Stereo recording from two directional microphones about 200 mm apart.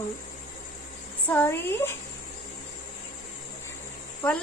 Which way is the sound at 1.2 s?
10° left (ahead or behind).